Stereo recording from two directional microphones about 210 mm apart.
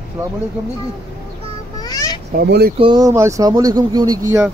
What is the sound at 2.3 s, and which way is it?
Speech, 50° right (ahead or behind).